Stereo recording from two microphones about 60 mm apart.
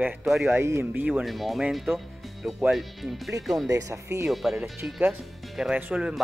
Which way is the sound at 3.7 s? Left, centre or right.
Right.